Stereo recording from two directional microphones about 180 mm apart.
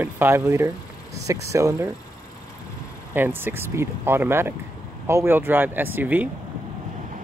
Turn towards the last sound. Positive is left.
turn(degrees=-10)  # may be behind; listen again after turning